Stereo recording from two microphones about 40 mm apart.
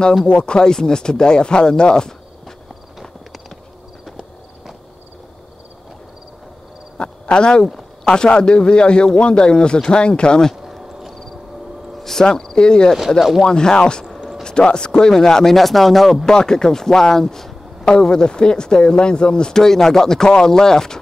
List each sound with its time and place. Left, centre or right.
0.3 s speech: left
7.0 s a sound: left
8.0 s speech: left
10.7 s insect: centre
12.0 s cricket: centre
12.3 s speech: centre
16.3 s speech: centre